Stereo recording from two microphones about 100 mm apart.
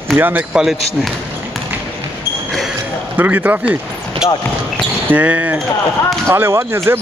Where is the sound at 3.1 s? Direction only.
20° right (ahead or behind).